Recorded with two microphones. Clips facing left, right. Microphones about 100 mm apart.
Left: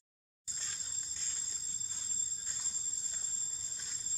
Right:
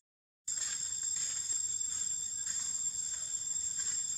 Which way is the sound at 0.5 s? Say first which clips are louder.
Even; 10° right (ahead or behind).